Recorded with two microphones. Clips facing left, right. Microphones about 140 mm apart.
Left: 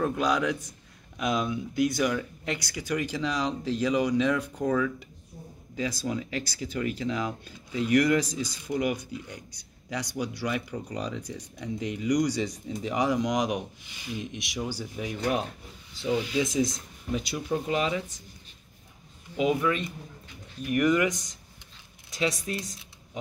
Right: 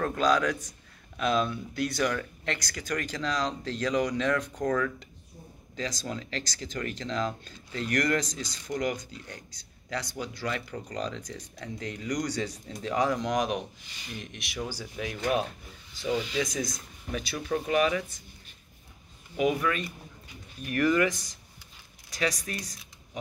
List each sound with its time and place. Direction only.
0.0 s speech: 10° left (ahead or behind)
16.5 s speech: 25° left (ahead or behind)
19.3 s speech: 25° left (ahead or behind)
21.1 s speech: centre (ahead or behind)
22.1 s speech: 25° left (ahead or behind)